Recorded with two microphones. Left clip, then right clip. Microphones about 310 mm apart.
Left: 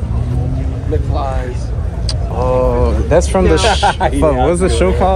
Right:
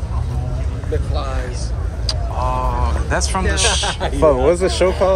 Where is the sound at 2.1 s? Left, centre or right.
Centre.